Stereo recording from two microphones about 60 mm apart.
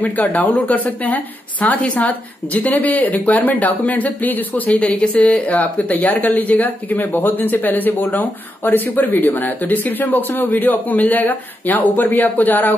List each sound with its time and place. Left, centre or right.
0.0 s a woman's voice: left